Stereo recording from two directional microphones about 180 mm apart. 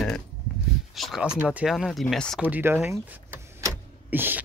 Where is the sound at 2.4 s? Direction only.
10° right (ahead or behind).